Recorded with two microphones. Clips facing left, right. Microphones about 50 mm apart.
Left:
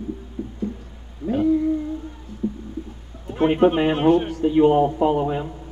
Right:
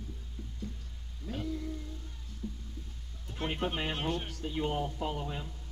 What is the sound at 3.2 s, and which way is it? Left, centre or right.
A man's voice, left.